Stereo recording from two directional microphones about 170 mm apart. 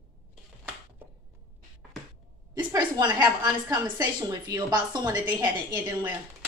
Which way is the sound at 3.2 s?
25° right (ahead or behind).